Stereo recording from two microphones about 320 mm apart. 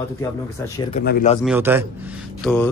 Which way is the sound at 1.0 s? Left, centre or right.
Left.